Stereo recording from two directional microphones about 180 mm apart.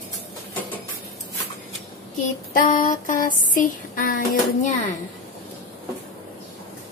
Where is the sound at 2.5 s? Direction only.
50° left (ahead or behind).